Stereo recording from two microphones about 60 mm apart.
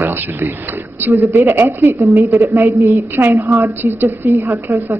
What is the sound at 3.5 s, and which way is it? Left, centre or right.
Speech, right.